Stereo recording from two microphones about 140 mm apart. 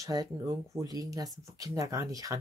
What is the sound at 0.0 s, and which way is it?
Speech, 25° right (ahead or behind).